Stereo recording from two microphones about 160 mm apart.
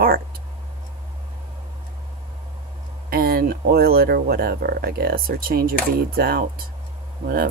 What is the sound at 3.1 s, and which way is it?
Speech, 70° right (ahead or behind).